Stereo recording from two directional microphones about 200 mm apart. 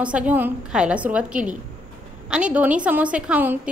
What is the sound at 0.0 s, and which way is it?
A woman's voice, 10° right (ahead or behind).